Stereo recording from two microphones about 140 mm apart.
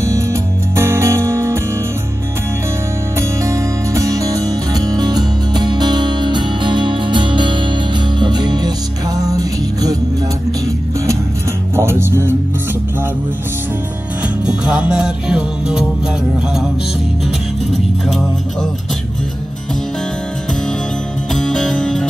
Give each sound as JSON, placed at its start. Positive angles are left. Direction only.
{"t": 0.0, "sound": "music", "side_deg": -20}
{"t": 3.2, "sound": "music", "side_deg": -20}
{"t": 11.7, "sound": "music", "side_deg": -15}
{"t": 14.4, "sound": "music", "side_deg": -5}
{"t": 21.4, "sound": "music", "side_deg": 5}